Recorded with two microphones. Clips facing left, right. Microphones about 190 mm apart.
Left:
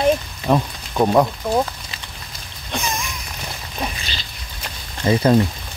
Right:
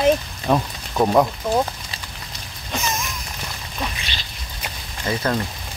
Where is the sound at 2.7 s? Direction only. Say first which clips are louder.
Even; 5° right (ahead or behind).